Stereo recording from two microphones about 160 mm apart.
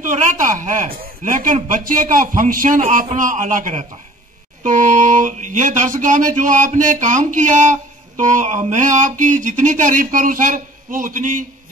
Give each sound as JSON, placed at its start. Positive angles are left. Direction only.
{"t": 0.0, "sound": "a man's voice", "side_deg": -50}